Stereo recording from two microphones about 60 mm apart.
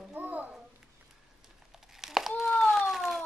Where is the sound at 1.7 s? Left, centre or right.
Centre.